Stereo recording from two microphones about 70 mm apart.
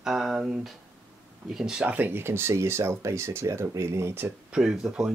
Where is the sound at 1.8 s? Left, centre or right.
Right.